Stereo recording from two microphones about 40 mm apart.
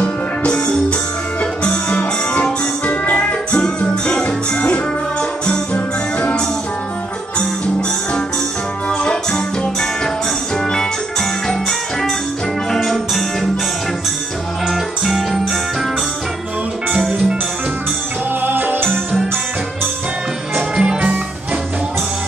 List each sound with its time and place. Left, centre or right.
0.0 s music: left
3.5 s music: left
8.8 s music: left
12.7 s music: centre
14.7 s music: centre
18.4 s music: right
20.5 s music: centre